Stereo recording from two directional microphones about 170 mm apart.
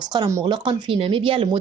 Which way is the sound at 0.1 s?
20° right (ahead or behind).